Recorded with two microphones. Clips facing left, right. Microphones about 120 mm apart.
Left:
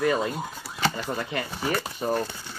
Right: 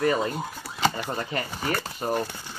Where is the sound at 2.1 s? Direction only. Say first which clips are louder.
Even; 15° right (ahead or behind).